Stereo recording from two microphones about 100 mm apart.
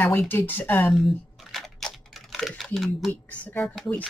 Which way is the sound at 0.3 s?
20° left (ahead or behind).